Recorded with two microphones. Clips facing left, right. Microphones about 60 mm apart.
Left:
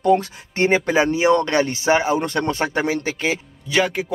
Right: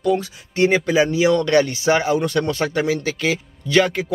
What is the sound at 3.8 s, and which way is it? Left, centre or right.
Speech, centre.